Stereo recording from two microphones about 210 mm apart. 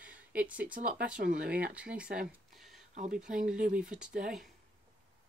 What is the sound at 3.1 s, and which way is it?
Speech, 5° right (ahead or behind).